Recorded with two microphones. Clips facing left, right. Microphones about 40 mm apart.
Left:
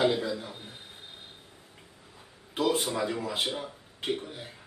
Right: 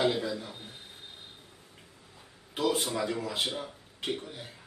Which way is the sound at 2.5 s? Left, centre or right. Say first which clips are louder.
Left 2 dB; centre.